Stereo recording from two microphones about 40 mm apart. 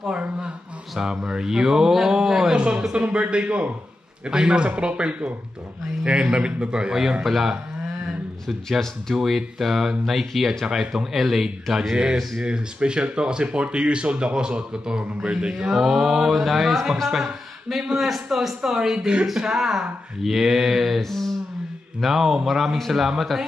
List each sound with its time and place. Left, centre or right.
0.9 s mantra: centre
2.5 s a man's voice: right
4.3 s a man's voice: right
7.2 s speech: centre
9.1 s speech: centre
10.6 s mantra: centre
12.4 s a man's voice: right
15.5 s speech: centre
17.8 s mantra: centre
21.0 s speech: centre
22.0 s speech: centre